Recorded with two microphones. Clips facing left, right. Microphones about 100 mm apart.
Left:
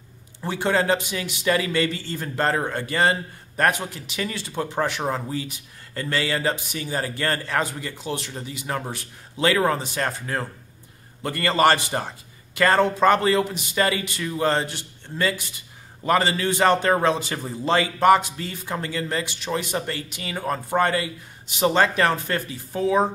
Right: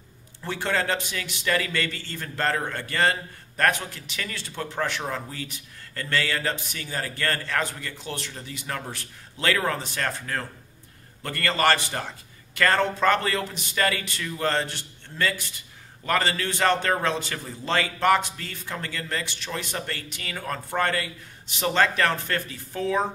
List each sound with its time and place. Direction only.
0.4 s a man's voice: 20° left (ahead or behind)